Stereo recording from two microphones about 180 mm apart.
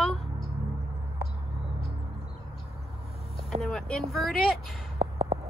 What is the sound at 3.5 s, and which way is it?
Speech, centre (ahead or behind).